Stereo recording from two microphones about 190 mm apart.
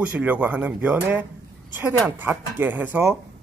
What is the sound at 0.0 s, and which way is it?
A man's voice, 10° right (ahead or behind).